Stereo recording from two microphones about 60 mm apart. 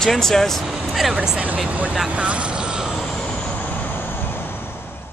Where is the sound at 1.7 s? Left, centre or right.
Right.